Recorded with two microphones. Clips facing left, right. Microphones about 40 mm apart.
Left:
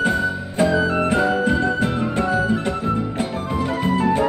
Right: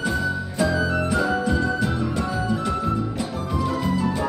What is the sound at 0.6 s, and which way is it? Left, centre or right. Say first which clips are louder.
Music: left 4 dB; left.